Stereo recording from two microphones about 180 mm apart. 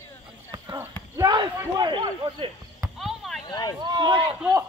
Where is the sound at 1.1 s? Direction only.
20° right (ahead or behind).